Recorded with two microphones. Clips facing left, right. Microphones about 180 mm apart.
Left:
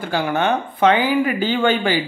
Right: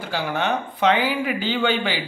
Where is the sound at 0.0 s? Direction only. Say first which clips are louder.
Left 5 dB; 50° left (ahead or behind).